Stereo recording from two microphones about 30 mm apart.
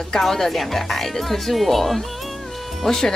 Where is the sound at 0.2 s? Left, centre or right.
Centre.